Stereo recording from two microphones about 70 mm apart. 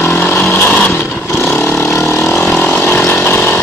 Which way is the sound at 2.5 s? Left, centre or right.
Left.